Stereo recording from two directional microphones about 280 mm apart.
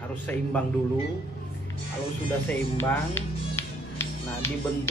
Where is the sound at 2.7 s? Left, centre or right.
Centre.